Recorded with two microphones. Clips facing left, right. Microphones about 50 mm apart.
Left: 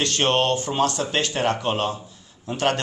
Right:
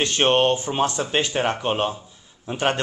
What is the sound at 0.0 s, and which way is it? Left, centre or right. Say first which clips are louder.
A man's voice: right 2 dB; right.